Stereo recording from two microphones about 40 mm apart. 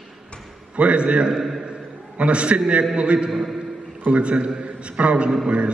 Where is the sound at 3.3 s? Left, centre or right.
Centre.